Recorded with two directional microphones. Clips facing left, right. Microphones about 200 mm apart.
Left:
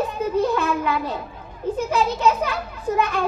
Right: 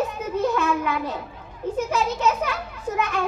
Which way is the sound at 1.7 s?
35° left (ahead or behind).